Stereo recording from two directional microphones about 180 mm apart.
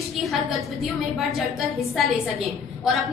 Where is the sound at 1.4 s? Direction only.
Centre (ahead or behind).